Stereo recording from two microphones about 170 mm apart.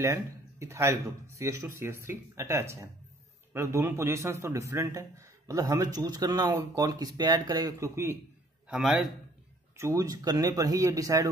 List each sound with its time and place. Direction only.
0.0 s a man's voice: 15° right (ahead or behind)
8.6 s a man's voice: centre (ahead or behind)
9.8 s speech: 20° right (ahead or behind)